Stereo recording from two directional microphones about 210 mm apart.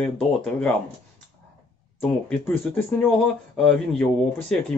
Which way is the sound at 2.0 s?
10° left (ahead or behind).